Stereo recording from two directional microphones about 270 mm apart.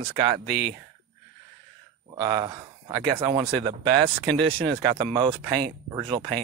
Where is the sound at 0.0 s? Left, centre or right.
Centre.